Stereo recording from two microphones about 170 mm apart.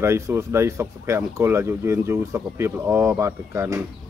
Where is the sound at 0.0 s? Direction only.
15° right (ahead or behind).